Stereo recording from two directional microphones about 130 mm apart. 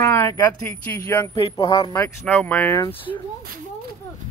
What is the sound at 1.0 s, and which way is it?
Speech, 25° left (ahead or behind).